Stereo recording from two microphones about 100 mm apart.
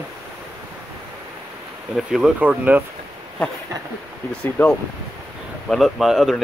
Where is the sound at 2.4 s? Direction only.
15° right (ahead or behind).